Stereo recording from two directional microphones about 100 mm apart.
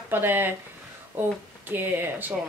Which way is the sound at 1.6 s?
20° right (ahead or behind).